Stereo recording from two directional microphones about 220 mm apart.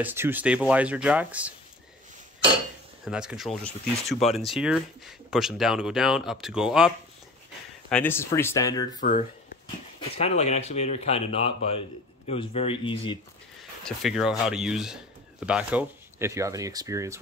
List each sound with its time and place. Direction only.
0.0 s speech: 10° right (ahead or behind)
3.1 s speech: 5° right (ahead or behind)
7.9 s speech: 10° left (ahead or behind)
9.0 s speech: 40° left (ahead or behind)
9.9 s speech: 25° left (ahead or behind)
13.6 s speech: centre (ahead or behind)